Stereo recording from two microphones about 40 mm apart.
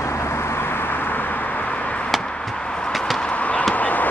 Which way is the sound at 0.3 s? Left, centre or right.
Left.